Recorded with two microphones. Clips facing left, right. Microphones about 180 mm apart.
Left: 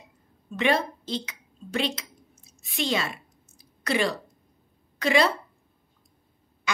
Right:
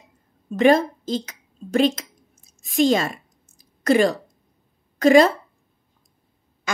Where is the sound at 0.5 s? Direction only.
45° right (ahead or behind).